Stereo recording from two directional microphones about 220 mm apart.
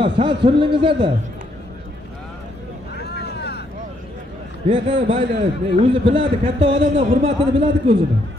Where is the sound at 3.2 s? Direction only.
50° left (ahead or behind).